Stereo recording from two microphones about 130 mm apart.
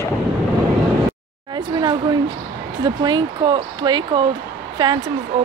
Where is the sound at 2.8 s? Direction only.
35° right (ahead or behind).